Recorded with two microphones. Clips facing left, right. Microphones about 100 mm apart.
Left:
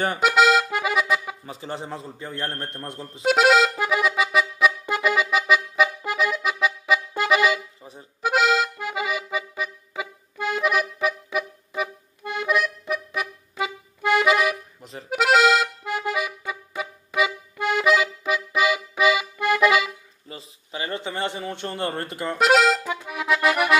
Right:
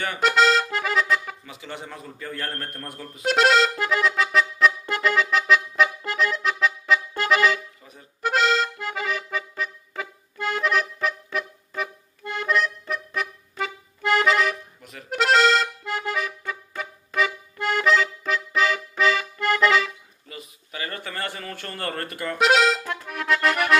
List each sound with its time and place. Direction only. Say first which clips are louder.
0.2 s accordion: left 1 dB; 5° left (ahead or behind)
1.4 s a man's voice: left 4 dB; 35° left (ahead or behind)
3.3 s accordion: left 2 dB; 5° left (ahead or behind)
7.8 s accordion: left 5 dB; 30° left (ahead or behind)
8.2 s accordion: left 1 dB; 5° left (ahead or behind)
14.8 s accordion: left 4 dB; 30° left (ahead or behind)
15.0 s accordion: left 1 dB; 5° left (ahead or behind)
20.2 s a sound: left 1 dB; 25° left (ahead or behind)
22.4 s accordion: left 1 dB; centre (ahead or behind)